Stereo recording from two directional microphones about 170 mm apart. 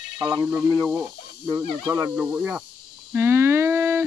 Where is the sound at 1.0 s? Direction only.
15° right (ahead or behind).